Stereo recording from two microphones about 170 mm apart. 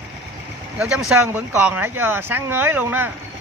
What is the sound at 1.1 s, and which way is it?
Speech, 10° right (ahead or behind).